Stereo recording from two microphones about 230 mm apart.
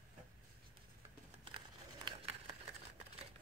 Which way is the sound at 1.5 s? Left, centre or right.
Right.